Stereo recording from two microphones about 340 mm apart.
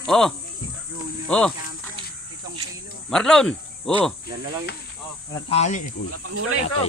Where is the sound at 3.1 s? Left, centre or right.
Centre.